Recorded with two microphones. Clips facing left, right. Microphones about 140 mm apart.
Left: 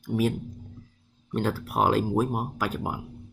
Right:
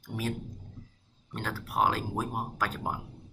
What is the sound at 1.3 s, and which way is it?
Speech, 20° left (ahead or behind).